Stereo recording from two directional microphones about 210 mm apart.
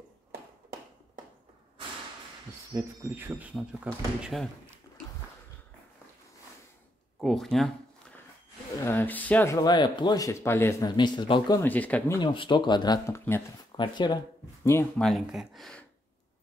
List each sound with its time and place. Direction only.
2.7 s speech: 10° right (ahead or behind)
7.2 s speech: centre (ahead or behind)
8.8 s speech: 10° left (ahead or behind)
12.2 s speech: 20° left (ahead or behind)
15.0 s speech: centre (ahead or behind)